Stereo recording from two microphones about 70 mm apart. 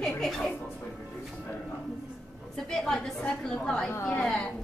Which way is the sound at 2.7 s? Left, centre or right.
Centre.